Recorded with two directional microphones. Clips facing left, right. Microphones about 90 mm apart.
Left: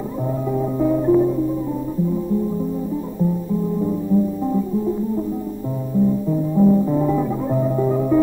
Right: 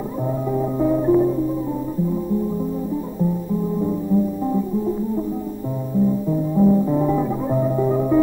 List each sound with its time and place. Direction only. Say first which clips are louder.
0.5 s music: even; 10° right (ahead or behind)
6.5 s music: left 1 dB; centre (ahead or behind)